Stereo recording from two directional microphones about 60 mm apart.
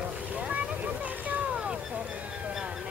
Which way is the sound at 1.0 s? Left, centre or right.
Right.